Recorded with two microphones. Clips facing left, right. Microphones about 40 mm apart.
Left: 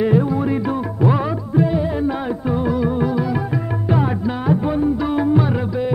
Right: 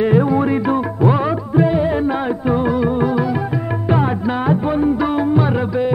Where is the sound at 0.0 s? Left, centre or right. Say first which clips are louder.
Right 3 dB; right.